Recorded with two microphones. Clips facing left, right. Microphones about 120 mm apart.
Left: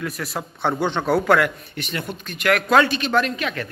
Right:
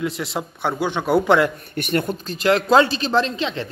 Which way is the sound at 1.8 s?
50° right (ahead or behind).